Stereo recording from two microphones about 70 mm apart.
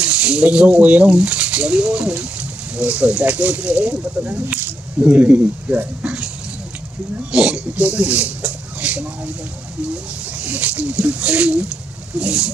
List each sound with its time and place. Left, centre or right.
0.0 s speech: centre
7.3 s speech: centre
10.4 s speech: right
12.2 s a sound: centre